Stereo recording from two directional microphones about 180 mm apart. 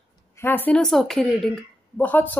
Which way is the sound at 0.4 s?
10° left (ahead or behind).